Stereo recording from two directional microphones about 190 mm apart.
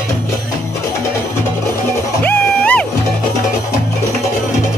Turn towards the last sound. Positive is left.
turn(degrees=5)  # may be behind; listen again after turning